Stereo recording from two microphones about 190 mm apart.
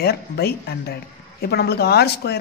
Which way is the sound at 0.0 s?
55° left (ahead or behind).